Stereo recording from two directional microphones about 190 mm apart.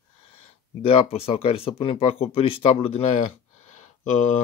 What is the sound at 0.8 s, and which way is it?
Speech, 30° left (ahead or behind).